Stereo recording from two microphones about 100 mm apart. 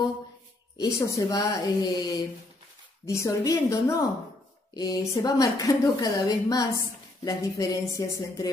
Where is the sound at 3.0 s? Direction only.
30° left (ahead or behind).